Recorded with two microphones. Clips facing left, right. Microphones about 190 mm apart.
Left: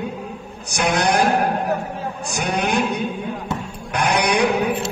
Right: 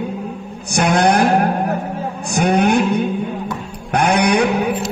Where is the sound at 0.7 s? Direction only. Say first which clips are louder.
Right 5 dB; 55° right (ahead or behind).